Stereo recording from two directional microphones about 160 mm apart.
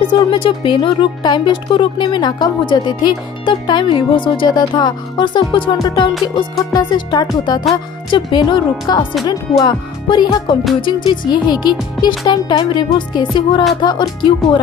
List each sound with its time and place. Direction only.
0.3 s speech: 35° left (ahead or behind)